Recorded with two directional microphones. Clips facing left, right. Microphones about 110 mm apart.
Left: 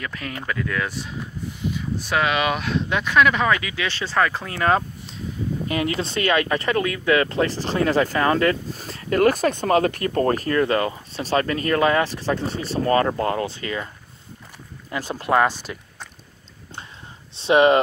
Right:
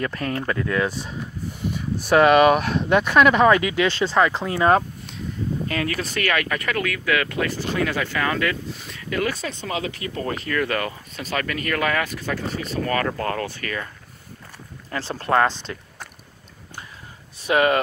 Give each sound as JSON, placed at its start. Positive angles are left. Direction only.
{"t": 0.0, "sound": "speech", "side_deg": -40}
{"t": 1.6, "sound": "speech", "side_deg": -50}
{"t": 4.1, "sound": "speech", "side_deg": -25}
{"t": 4.7, "sound": "a sound", "side_deg": 0}
{"t": 5.7, "sound": "speech", "side_deg": 20}
{"t": 10.5, "sound": "speech", "side_deg": 25}
{"t": 14.9, "sound": "speech", "side_deg": 15}
{"t": 17.4, "sound": "speech", "side_deg": 25}